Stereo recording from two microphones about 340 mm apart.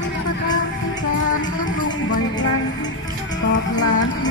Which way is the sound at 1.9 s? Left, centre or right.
Centre.